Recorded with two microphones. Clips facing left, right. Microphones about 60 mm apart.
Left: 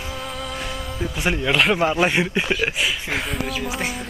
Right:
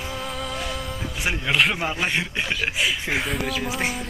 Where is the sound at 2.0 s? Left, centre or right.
Centre.